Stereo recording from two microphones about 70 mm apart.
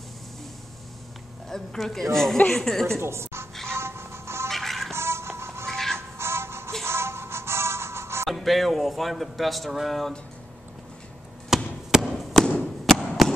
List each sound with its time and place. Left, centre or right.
1.5 s speech: centre
3.0 s a woman's voice: right
3.7 s music: right
4.5 s music: centre
4.9 s music: right
5.7 s music: centre
5.9 s music: right
8.3 s speech: centre
11.5 s basketball bounce: centre
11.9 s a sound: centre